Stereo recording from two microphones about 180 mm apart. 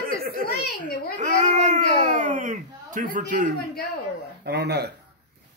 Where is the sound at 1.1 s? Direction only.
45° right (ahead or behind).